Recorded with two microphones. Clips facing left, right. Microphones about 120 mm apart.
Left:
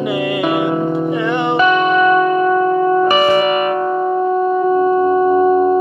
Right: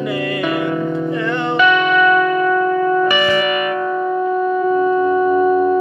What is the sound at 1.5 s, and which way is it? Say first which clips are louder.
Music: left 1 dB; 40° left (ahead or behind).